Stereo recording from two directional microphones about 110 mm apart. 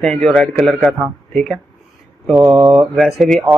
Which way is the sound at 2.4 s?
45° right (ahead or behind).